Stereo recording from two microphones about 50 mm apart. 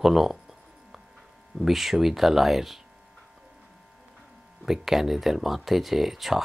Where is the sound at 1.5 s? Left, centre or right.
Centre.